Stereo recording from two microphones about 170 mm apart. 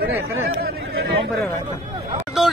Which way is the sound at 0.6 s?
65° right (ahead or behind).